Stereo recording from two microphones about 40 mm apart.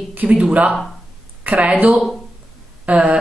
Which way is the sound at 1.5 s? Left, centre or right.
Right.